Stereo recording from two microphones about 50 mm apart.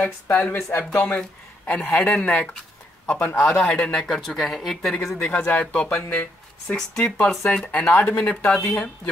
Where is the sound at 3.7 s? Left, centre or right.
Centre.